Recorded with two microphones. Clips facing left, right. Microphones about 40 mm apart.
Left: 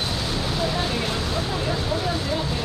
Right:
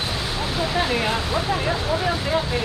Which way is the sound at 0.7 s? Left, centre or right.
Right.